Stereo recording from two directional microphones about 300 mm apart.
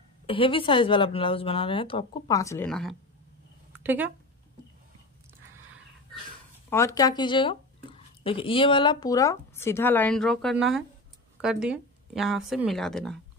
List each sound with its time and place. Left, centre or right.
0.3 s a woman's voice: centre
6.7 s a woman's voice: centre